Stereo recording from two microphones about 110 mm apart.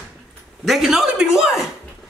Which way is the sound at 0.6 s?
Centre (ahead or behind).